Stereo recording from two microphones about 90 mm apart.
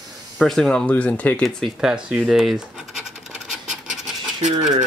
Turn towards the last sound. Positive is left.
turn(degrees=0)  # may be behind; listen again after turning